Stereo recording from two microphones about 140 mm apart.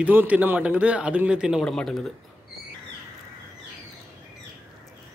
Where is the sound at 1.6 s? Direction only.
5° left (ahead or behind).